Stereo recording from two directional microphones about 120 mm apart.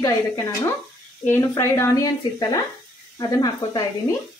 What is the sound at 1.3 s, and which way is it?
Speech, 20° left (ahead or behind).